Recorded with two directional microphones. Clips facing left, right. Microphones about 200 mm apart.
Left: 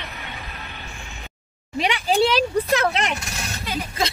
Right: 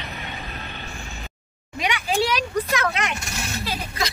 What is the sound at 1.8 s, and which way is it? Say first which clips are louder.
A woman's voice: left 4 dB; 30° left (ahead or behind).